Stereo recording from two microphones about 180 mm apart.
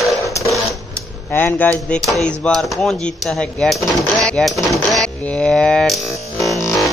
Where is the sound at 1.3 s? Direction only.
10° left (ahead or behind).